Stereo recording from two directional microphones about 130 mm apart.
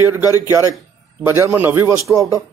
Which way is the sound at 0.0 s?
15° right (ahead or behind).